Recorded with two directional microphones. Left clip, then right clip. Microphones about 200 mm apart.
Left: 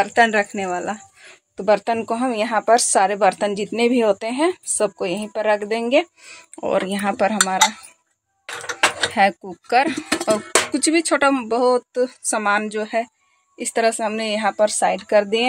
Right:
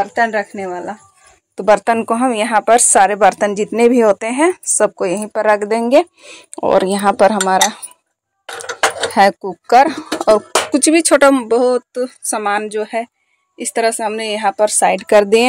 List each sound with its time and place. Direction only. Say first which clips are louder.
0.0 s speech: right 1 dB; centre (ahead or behind)
1.6 s a woman's voice: right 6 dB; 10° right (ahead or behind)
9.1 s speech: right 6 dB; 25° right (ahead or behind)
14.9 s a woman's voice: right 7 dB; 35° right (ahead or behind)